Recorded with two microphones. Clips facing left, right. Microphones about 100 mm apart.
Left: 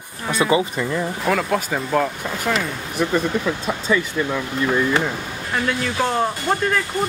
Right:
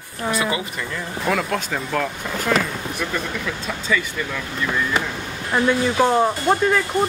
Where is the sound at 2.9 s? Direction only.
30° left (ahead or behind).